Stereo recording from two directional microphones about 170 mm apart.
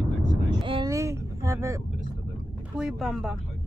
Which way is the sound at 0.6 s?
30° right (ahead or behind).